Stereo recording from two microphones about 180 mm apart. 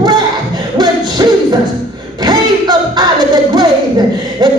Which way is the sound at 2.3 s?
25° right (ahead or behind).